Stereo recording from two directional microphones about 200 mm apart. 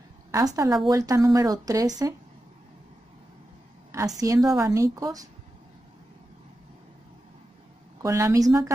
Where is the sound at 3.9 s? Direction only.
15° right (ahead or behind).